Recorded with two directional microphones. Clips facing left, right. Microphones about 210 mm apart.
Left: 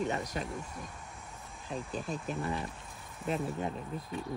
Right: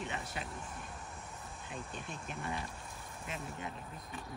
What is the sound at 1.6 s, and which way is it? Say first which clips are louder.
Speech: left 9 dB; 35° left (ahead or behind).